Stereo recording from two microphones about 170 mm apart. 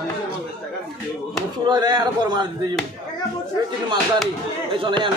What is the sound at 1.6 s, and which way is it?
Speech, 25° right (ahead or behind).